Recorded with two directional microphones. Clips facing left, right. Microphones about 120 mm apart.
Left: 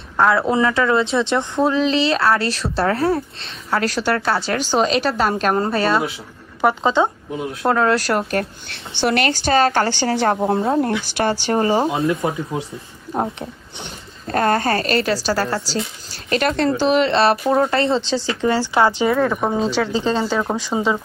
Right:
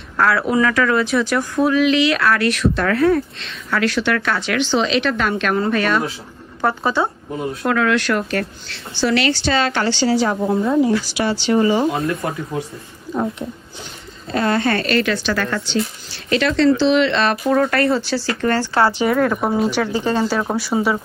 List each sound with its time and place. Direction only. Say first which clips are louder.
0.2 s speech: left 1 dB; 25° left (ahead or behind)
6.6 s speech: left 2 dB; 20° left (ahead or behind)
7.6 s speech: left 1 dB; 35° left (ahead or behind)
9.0 s a woman's voice: right 1 dB; 50° left (ahead or behind)
12.2 s speech: left 2 dB; 10° left (ahead or behind)
14.2 s speech: left 1 dB; 45° left (ahead or behind)
17.5 s speech: right 1 dB; 25° left (ahead or behind)
19.1 s speech: right 1 dB; 5° left (ahead or behind)
19.5 s speech: right 1 dB; 10° right (ahead or behind)
19.9 s speech: right 1 dB; 15° left (ahead or behind)